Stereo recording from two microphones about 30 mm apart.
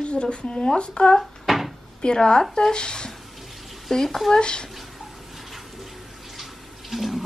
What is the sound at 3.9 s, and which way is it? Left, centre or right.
Speech, centre.